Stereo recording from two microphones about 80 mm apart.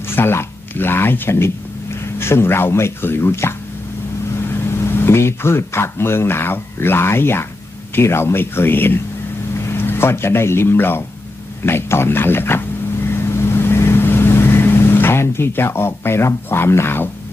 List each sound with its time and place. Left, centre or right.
0.1 s a sound: left
2.1 s speech: left
11.6 s vehicle: left